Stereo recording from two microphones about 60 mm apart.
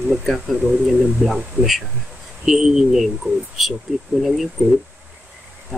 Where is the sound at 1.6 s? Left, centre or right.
Right.